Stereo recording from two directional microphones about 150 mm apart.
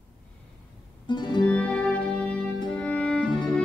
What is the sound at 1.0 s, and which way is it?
Music, 30° left (ahead or behind).